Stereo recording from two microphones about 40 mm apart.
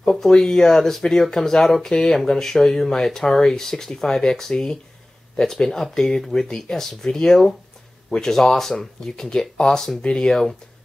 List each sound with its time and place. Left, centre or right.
0.0 s speech: centre